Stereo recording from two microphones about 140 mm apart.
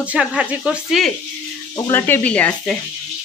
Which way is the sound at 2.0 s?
10° left (ahead or behind).